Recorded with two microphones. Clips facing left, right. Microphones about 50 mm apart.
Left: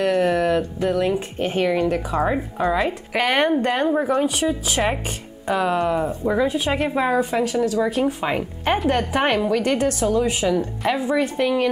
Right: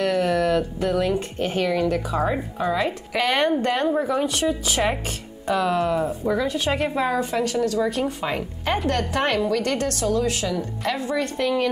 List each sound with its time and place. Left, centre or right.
0.0 s a woman's voice: centre
4.6 s a woman's voice: centre